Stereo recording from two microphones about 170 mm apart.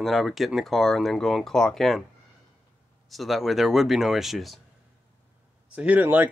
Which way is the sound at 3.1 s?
Centre (ahead or behind).